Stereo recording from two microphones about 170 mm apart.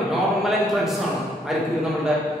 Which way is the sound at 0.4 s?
Centre (ahead or behind).